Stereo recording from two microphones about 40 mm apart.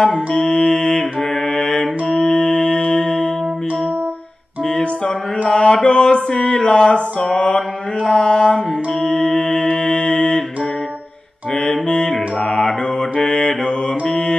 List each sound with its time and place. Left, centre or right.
0.0 s mantra: centre
1.3 s mantra: centre
2.2 s music: left
4.6 s music: left
5.5 s mantra: left
11.5 s music: centre
12.1 s mantra: centre